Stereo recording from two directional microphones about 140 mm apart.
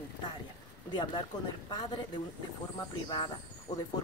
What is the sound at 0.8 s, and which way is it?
Speech, 35° left (ahead or behind).